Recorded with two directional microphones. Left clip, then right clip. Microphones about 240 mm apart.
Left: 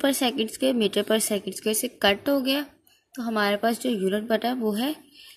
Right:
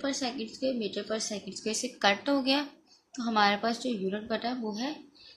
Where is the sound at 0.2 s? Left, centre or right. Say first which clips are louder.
Left 8 dB; left.